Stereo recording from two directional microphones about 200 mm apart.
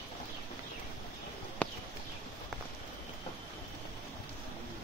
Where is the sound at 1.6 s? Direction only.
5° left (ahead or behind).